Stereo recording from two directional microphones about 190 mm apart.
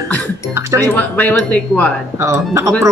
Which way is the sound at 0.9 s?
10° left (ahead or behind).